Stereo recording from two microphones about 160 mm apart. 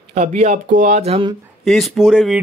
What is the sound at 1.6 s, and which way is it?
Speech, centre (ahead or behind).